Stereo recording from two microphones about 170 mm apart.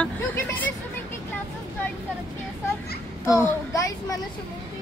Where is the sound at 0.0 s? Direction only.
10° left (ahead or behind).